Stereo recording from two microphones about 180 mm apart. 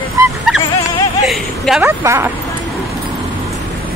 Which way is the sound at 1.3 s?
Centre (ahead or behind).